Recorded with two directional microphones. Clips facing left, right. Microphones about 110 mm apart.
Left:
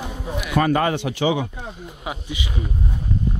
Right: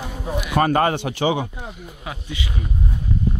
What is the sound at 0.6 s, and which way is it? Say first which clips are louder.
Speech: right 1 dB; 45° right (ahead or behind).